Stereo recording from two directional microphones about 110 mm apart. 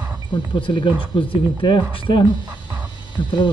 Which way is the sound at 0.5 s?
50° left (ahead or behind).